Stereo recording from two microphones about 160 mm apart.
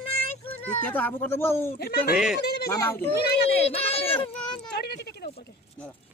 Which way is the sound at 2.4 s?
80° left.